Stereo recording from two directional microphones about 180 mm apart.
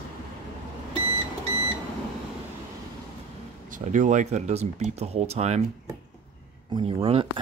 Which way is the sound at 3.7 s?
45° right (ahead or behind).